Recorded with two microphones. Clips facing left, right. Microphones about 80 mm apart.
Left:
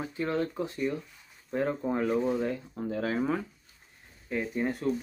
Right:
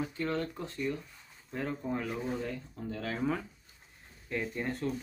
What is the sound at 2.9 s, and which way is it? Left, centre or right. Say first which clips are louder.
Speech: left 4 dB; centre.